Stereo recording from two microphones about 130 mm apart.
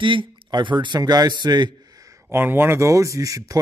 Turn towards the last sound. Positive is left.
turn(degrees=-25)  # may be behind; listen again after turning